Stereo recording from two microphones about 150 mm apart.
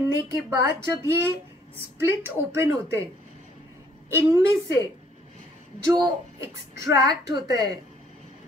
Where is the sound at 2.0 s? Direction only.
15° right (ahead or behind).